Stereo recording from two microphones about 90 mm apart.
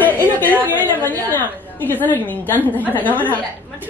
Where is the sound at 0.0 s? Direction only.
20° left (ahead or behind).